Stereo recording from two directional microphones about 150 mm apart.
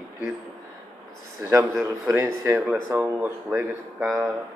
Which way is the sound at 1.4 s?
15° right (ahead or behind).